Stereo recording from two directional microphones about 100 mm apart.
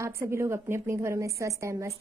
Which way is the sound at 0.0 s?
25° right (ahead or behind).